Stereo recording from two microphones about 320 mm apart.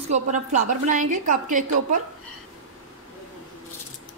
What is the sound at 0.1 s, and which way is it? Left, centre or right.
A woman's voice, right.